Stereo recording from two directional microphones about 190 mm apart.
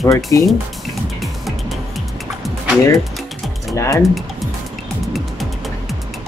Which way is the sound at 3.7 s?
15° left (ahead or behind).